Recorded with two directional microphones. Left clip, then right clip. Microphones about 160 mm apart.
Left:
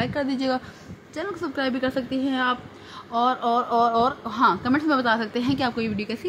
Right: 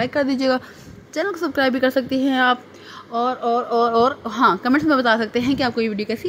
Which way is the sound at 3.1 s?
15° right (ahead or behind).